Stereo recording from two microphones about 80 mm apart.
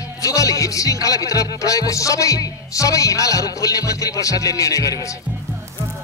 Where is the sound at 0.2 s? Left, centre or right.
Left.